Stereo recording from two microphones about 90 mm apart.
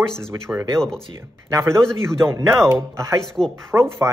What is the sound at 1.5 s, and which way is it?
Speech, 35° right (ahead or behind).